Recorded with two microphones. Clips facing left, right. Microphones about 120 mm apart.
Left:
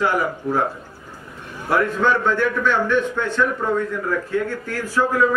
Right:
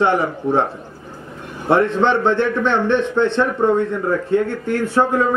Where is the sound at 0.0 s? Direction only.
25° right (ahead or behind).